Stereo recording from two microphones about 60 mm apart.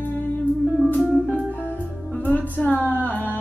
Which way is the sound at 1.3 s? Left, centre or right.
Left.